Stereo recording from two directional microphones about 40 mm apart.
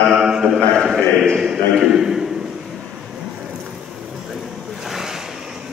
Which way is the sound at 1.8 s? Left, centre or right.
Centre.